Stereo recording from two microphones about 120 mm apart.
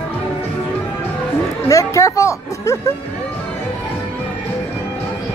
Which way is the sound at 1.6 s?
25° left (ahead or behind).